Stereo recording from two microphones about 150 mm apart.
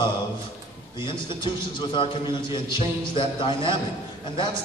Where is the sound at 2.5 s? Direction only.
30° left (ahead or behind).